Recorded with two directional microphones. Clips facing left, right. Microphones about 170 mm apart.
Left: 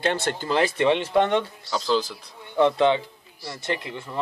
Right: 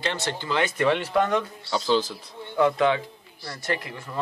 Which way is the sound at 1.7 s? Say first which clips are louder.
Right 1 dB; centre (ahead or behind).